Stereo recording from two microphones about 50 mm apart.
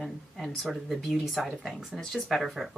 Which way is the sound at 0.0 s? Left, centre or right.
Centre.